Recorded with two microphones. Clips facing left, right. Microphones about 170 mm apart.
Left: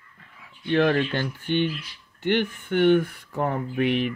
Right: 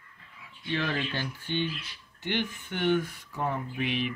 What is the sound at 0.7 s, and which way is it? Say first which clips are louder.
Speech: left 10 dB; 55° left (ahead or behind).